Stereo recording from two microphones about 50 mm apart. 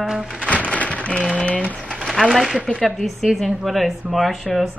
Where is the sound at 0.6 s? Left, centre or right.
Left.